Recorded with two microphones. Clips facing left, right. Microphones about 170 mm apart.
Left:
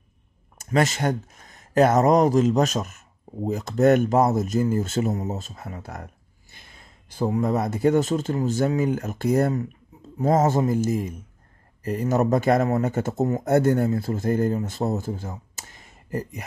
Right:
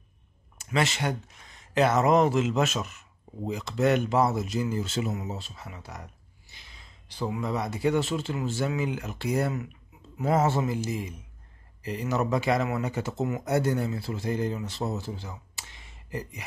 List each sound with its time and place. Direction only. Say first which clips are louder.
0.6 s speech: left 5 dB; 45° left (ahead or behind)